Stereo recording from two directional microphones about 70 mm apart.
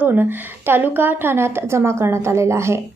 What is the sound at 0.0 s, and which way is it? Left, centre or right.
A woman's voice, right.